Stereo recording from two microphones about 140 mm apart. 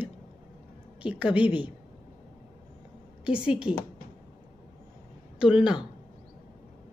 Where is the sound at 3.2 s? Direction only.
5° right (ahead or behind).